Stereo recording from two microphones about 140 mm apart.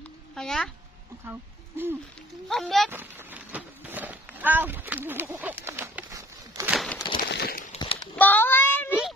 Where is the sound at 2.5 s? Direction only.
Centre (ahead or behind).